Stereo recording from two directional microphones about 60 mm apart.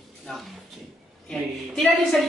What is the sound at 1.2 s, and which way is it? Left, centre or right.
Speech, centre.